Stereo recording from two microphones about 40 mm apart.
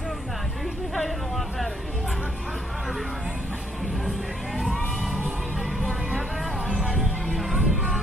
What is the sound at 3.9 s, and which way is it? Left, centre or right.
Speech, centre.